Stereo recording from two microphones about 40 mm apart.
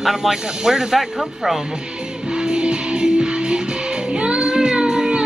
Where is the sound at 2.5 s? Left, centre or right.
Right.